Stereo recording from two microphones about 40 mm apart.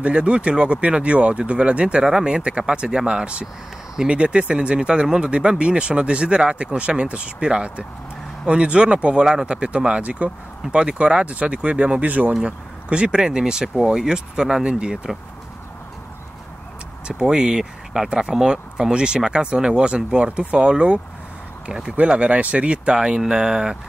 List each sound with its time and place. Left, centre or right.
0.0 s speech: right
12.4 s speech: right
17.1 s speech: centre